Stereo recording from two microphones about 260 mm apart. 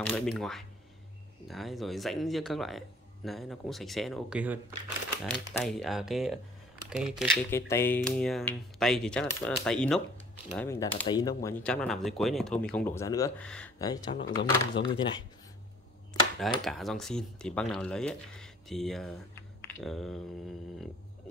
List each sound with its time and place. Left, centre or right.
0.0 s speech: centre
7.5 s speech: centre
16.6 s speech: centre